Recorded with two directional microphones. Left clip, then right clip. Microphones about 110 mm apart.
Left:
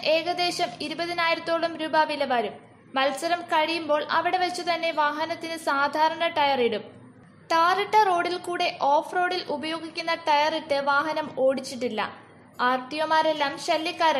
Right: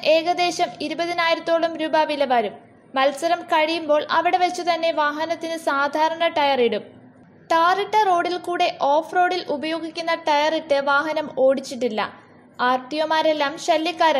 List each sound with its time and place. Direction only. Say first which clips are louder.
0.0 s a woman's voice: right 5 dB; 25° right (ahead or behind)